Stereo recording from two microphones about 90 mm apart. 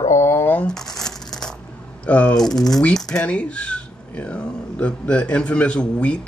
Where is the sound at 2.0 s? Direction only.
15° left (ahead or behind).